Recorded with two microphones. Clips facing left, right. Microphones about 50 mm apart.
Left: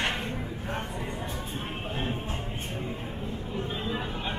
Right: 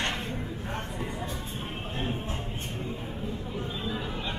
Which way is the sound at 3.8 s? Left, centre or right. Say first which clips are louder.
Left 1 dB; left.